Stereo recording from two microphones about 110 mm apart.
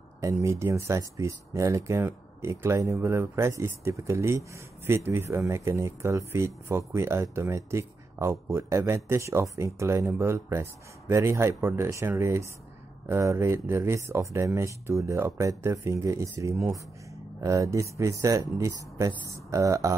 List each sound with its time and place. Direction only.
0.2 s speech: 30° right (ahead or behind)